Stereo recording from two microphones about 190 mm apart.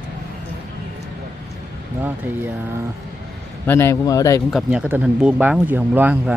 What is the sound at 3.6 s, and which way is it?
Speech, 15° left (ahead or behind).